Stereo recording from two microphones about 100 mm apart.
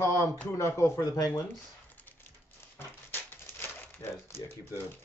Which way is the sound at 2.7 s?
25° left (ahead or behind).